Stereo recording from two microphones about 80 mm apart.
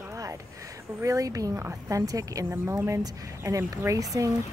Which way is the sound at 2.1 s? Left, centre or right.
Right.